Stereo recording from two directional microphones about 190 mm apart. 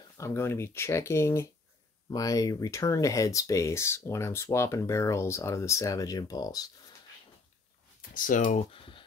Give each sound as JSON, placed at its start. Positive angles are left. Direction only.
{"t": 0.2, "sound": "speech", "side_deg": 15}
{"t": 8.1, "sound": "speech", "side_deg": 45}
{"t": 8.7, "sound": "speech", "side_deg": 30}